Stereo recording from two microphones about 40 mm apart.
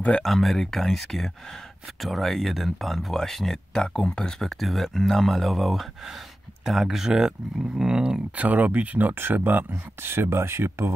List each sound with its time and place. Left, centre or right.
0.2 s speech: centre
3.7 s speech: left
4.2 s speech: centre
8.4 s speech: right
9.1 s speech: right